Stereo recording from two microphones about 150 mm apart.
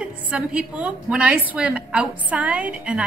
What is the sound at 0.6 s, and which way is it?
A woman's voice, 10° right (ahead or behind).